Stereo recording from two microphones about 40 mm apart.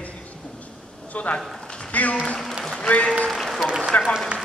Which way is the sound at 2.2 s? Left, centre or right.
Centre.